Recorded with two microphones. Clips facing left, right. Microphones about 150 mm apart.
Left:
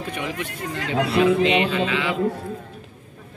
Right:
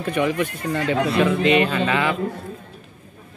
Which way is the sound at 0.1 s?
55° right (ahead or behind).